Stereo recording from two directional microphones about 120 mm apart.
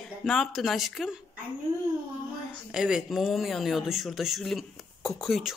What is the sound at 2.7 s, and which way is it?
Speech, 5° right (ahead or behind).